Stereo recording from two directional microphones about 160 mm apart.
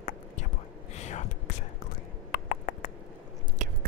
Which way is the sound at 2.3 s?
65° left (ahead or behind).